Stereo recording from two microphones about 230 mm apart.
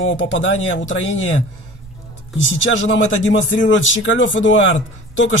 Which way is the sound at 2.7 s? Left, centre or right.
Left.